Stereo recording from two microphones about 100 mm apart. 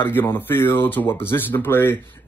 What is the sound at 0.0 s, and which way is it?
Speech, 20° left (ahead or behind).